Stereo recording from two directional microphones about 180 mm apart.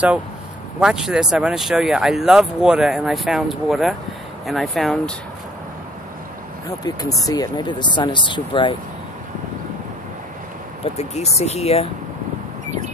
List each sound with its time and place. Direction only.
0.7 s speech: 5° right (ahead or behind)
6.8 s speech: 20° left (ahead or behind)
10.8 s speech: 35° left (ahead or behind)